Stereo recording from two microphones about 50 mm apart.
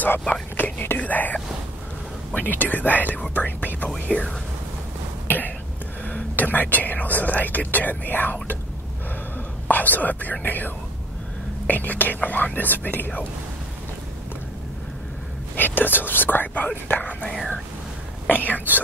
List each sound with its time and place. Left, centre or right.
0.6 s whispering: left
0.9 s speech: left
6.0 s speech: left
9.7 s speech: left
15.5 s speech: left